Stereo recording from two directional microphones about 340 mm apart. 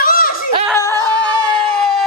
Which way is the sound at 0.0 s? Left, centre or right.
Left.